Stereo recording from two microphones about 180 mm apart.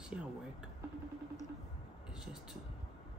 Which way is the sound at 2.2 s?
5° right (ahead or behind).